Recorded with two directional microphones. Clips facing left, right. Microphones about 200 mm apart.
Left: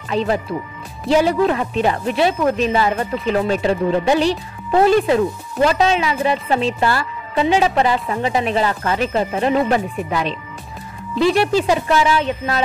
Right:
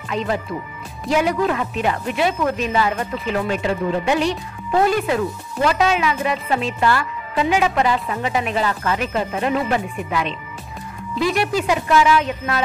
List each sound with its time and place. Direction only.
0.1 s a woman's voice: 30° left (ahead or behind)